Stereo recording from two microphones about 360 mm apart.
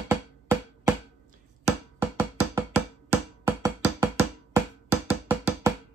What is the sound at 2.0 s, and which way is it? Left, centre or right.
Music, centre.